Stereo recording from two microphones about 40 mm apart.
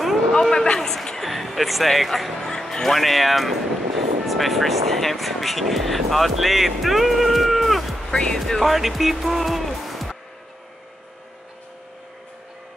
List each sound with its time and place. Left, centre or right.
0.3 s a sound: centre
0.7 s speech: centre
2.4 s speech: centre
8.1 s speech: centre
8.4 s speech: centre